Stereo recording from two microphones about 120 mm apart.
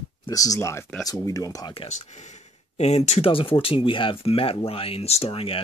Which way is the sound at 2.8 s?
65° left (ahead or behind).